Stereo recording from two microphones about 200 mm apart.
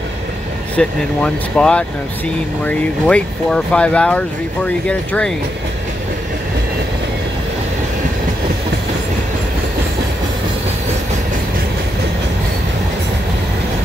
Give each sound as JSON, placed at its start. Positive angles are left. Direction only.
{"t": 0.7, "sound": "speech", "side_deg": 5}